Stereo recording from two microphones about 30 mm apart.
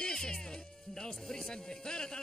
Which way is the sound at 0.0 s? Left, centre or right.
Left.